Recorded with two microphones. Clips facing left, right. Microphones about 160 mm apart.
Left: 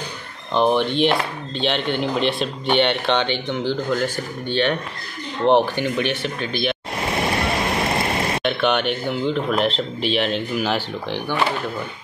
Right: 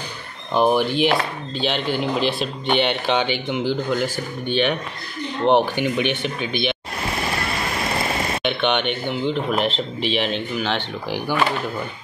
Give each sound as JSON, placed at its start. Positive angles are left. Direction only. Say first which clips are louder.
{"t": 0.6, "sound": "speech", "louder": "even", "side_deg": -10}
{"t": 8.4, "sound": "speech", "louder": "left 1 dB", "side_deg": 0}